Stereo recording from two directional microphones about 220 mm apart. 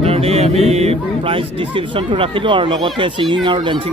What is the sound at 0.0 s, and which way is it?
Speech, 25° right (ahead or behind).